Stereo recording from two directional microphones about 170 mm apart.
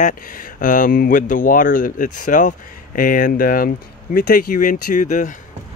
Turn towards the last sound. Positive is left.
turn(degrees=45)  # may be behind; listen again after turning